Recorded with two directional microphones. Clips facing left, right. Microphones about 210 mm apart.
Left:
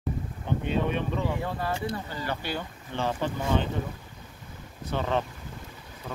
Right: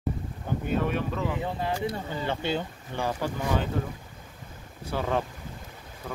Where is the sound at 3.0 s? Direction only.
5° right (ahead or behind).